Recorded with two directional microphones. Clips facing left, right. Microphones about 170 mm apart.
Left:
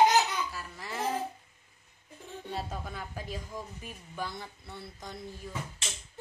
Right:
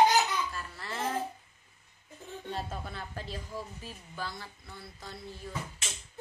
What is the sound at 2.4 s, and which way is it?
A woman's voice, 10° left (ahead or behind).